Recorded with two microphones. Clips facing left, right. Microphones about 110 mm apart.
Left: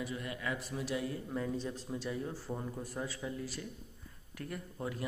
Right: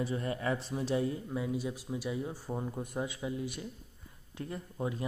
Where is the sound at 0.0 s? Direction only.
35° right (ahead or behind).